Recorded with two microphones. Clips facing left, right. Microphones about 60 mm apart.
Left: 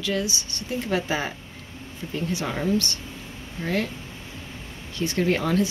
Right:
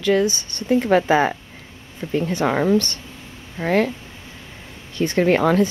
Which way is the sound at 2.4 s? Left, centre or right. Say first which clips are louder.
Right 9 dB; right.